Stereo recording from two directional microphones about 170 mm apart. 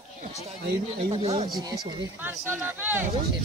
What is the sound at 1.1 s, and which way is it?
Speech, 35° right (ahead or behind).